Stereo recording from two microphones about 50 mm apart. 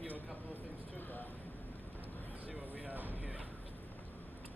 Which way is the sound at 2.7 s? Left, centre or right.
Right.